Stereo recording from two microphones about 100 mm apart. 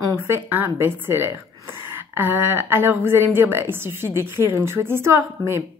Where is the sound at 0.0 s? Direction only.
25° right (ahead or behind).